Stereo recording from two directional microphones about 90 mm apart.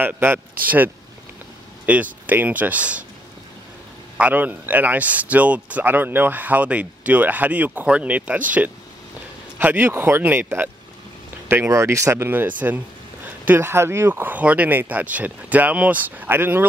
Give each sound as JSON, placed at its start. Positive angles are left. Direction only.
{"t": 0.0, "sound": "speech", "side_deg": -25}
{"t": 4.2, "sound": "speech", "side_deg": -20}